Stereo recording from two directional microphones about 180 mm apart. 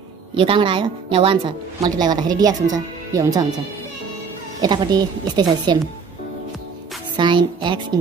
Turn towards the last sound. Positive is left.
turn(degrees=-25)  # may be behind; listen again after turning